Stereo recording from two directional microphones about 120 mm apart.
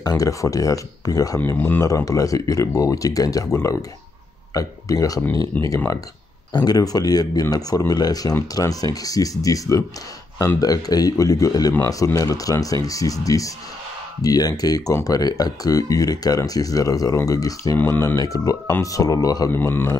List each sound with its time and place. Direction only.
0.0 s speech: 30° left (ahead or behind)
1.4 s speech: 20° left (ahead or behind)
5.5 s a man's voice: 10° left (ahead or behind)
6.5 s a man's voice: 35° left (ahead or behind)
19.5 s a man's voice: 20° left (ahead or behind)